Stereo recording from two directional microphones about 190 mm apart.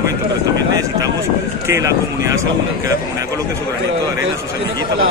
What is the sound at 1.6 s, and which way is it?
Speech, 15° right (ahead or behind).